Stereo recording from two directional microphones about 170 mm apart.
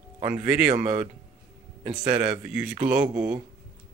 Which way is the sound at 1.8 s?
10° right (ahead or behind).